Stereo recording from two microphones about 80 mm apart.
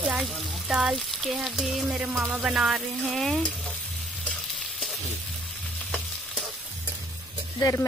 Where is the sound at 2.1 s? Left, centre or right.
Centre.